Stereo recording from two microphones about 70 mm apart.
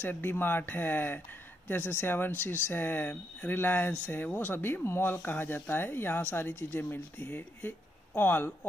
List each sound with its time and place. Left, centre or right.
0.0 s speech: left